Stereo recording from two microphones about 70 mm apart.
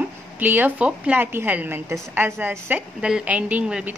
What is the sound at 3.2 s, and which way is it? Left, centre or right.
Speech, right.